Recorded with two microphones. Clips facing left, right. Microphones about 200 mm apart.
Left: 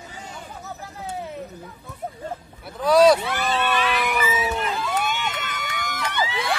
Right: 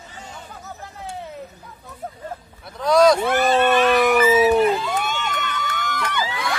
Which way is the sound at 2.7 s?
5° left (ahead or behind).